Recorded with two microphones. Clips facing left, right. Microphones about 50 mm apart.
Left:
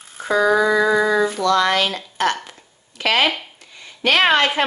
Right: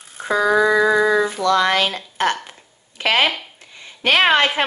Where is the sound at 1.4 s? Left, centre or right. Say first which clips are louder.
Right 1 dB; right.